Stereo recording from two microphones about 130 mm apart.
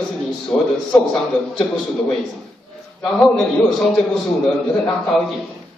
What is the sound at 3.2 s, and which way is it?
A man's voice, 5° left (ahead or behind).